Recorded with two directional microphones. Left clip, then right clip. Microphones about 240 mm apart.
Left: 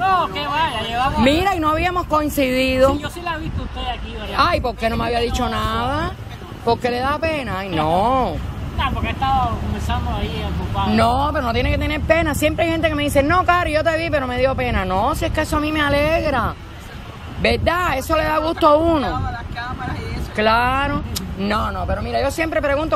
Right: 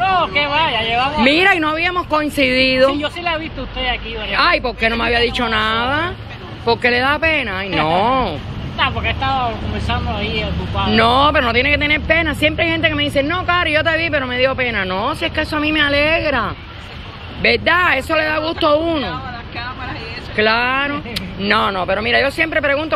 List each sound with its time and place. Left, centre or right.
0.0 s speech: centre
4.3 s speech: centre
20.3 s speech: centre
21.6 s speech: right
22.1 s speech: centre